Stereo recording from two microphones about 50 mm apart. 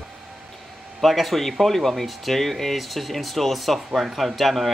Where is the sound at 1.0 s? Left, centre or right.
Centre.